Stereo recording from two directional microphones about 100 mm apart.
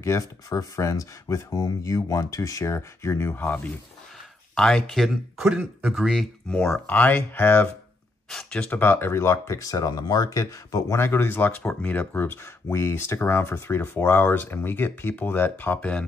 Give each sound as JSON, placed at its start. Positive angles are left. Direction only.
{"t": 0.0, "sound": "speech", "side_deg": 30}
{"t": 5.6, "sound": "speech", "side_deg": -15}
{"t": 5.9, "sound": "speech", "side_deg": 0}
{"t": 6.5, "sound": "speech", "side_deg": 10}
{"t": 8.3, "sound": "speech", "side_deg": 5}
{"t": 8.7, "sound": "speech", "side_deg": 20}